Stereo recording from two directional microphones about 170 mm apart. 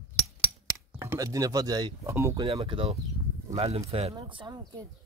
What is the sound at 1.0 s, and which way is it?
Speech, 15° right (ahead or behind).